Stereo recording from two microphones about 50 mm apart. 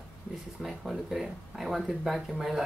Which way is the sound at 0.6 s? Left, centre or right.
Centre.